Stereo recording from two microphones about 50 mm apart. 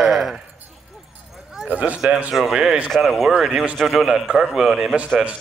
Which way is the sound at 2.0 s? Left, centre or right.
Right.